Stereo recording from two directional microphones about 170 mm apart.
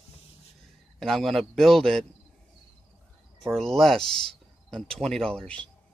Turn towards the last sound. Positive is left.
turn(degrees=5)  # may be behind; listen again after turning